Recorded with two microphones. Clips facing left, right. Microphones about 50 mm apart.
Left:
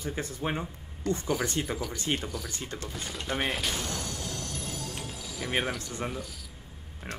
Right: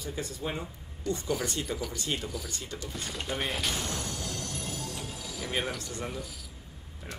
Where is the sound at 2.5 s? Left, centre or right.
Left.